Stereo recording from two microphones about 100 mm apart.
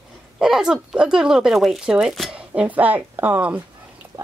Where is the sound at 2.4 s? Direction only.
15° right (ahead or behind).